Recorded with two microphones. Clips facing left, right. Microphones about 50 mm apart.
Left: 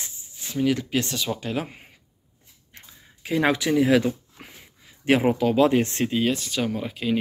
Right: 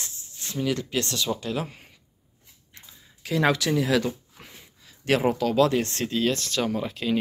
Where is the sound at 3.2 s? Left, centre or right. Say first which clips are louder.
Left 1 dB; left.